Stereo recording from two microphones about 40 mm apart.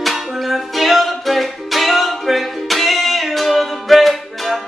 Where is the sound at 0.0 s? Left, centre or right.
Centre.